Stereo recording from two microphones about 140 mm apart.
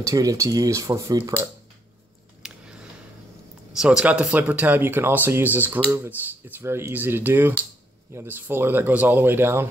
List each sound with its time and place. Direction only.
0.0 s speech: 25° right (ahead or behind)
2.4 s a sound: 5° right (ahead or behind)
3.7 s speech: 5° right (ahead or behind)